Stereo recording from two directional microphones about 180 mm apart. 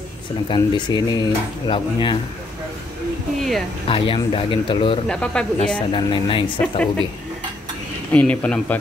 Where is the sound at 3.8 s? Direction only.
30° left (ahead or behind).